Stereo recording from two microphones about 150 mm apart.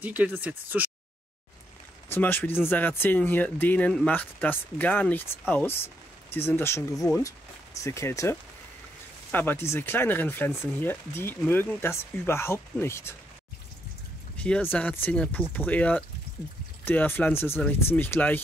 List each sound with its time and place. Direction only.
0.0 s speech: 10° right (ahead or behind)
2.0 s speech: 15° left (ahead or behind)
14.3 s speech: 10° left (ahead or behind)